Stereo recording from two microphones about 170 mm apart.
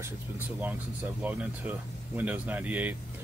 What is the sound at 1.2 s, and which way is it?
Speech, 10° right (ahead or behind).